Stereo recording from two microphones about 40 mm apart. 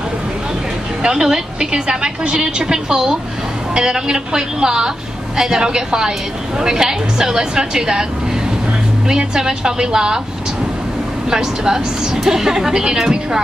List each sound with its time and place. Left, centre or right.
1.0 s a woman's voice: centre
9.1 s a woman's voice: centre
11.2 s a woman's voice: centre